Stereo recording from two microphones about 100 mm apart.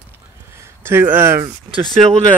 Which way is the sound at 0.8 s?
20° right (ahead or behind).